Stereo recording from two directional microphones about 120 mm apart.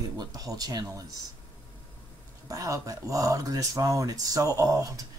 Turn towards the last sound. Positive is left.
turn(degrees=-30)  # may be behind; listen again after turning